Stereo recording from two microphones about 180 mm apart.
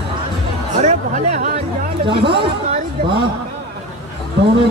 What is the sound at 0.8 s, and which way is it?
Speech, 40° right (ahead or behind).